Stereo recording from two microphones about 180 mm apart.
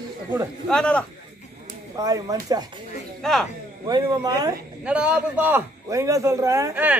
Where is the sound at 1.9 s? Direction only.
20° right (ahead or behind).